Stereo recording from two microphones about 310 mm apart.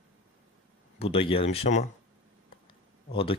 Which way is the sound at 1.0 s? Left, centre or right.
Centre.